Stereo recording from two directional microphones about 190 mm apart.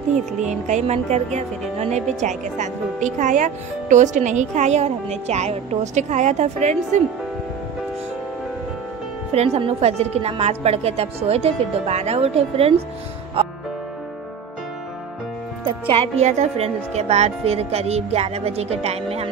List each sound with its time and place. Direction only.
0.7 s speech: 35° right (ahead or behind)
9.3 s speech: 35° right (ahead or behind)
15.9 s speech: 30° right (ahead or behind)